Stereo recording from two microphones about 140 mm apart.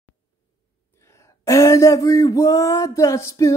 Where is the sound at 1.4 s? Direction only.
20° left (ahead or behind).